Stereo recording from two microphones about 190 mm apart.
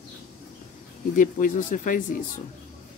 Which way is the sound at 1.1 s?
45° left (ahead or behind).